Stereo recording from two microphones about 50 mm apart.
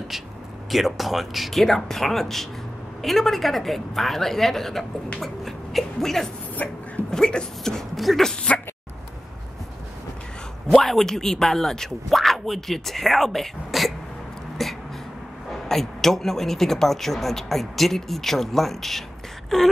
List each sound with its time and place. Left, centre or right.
0.7 s a man's voice: centre
6.6 s speech: left
7.1 s speech: centre
7.9 s a man's voice: centre
10.7 s a man's voice: centre
14.6 s a sound: centre
15.5 s a man's voice: centre